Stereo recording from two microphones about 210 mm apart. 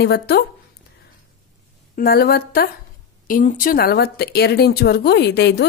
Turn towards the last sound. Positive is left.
turn(degrees=55)  # may be behind; listen again after turning